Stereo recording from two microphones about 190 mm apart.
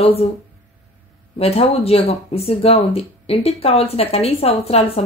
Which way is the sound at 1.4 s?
30° left (ahead or behind).